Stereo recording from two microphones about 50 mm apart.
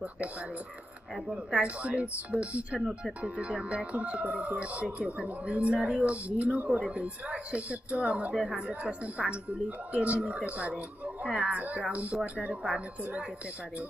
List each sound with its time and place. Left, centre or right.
1.6 s speech: right